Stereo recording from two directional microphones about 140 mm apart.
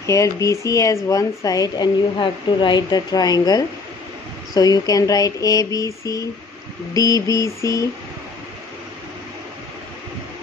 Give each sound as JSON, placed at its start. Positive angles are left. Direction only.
{"t": 0.0, "sound": "speech", "side_deg": 20}